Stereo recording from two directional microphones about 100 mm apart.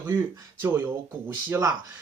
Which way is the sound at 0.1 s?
25° right (ahead or behind).